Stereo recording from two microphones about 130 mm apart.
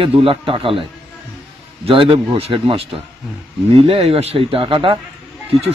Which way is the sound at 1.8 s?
45° right (ahead or behind).